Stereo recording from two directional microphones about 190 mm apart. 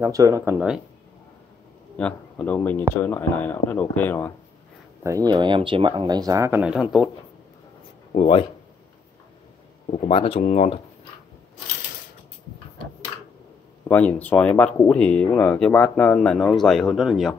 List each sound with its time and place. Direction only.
0.0 s speech: 15° right (ahead or behind)
2.0 s speech: 5° left (ahead or behind)
5.0 s speech: 20° right (ahead or behind); by 7.1 s 5° right (ahead or behind)
8.1 s speech: 30° left (ahead or behind)
9.9 s speech: 30° left (ahead or behind)
13.8 s speech: 10° left (ahead or behind)